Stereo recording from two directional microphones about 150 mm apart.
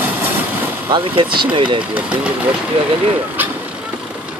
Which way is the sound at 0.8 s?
30° right (ahead or behind).